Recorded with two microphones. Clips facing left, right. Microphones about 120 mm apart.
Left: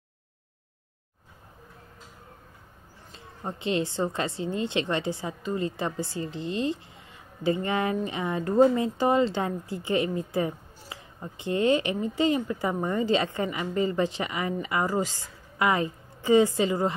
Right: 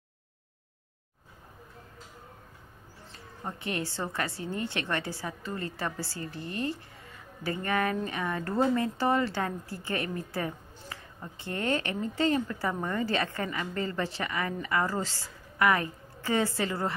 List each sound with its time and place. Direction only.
3.1 s a woman's voice: 20° left (ahead or behind)